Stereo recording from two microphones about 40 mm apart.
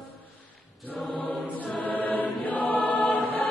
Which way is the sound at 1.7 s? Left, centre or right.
Left.